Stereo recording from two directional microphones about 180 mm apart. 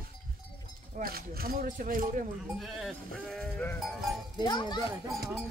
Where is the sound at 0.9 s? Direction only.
55° right (ahead or behind).